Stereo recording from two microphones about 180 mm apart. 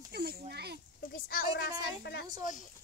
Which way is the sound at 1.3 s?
60° left (ahead or behind).